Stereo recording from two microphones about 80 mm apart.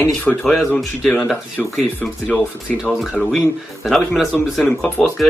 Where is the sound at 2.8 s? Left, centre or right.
Centre.